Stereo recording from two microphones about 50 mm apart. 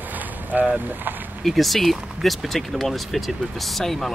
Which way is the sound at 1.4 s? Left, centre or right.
Centre.